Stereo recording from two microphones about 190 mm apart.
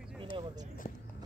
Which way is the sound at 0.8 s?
40° left (ahead or behind).